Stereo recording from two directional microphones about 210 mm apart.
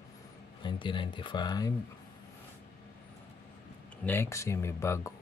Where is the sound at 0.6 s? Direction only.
20° left (ahead or behind).